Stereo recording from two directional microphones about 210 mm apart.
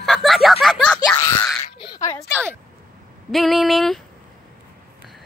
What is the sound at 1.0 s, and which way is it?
Speech, 15° left (ahead or behind).